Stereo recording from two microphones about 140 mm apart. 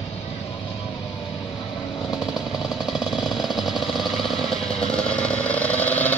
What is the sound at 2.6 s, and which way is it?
Jackhammer, centre (ahead or behind).